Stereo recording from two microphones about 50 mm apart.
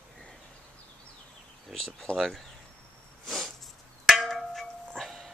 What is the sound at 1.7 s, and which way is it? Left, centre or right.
Speech, centre.